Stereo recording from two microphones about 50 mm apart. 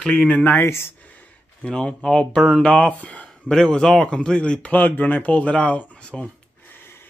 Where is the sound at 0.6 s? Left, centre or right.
Left.